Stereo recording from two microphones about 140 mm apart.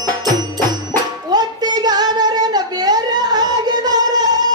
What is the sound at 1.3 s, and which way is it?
Singing, 30° right (ahead or behind).